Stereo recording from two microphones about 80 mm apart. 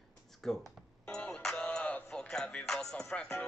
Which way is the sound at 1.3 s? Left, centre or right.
Centre.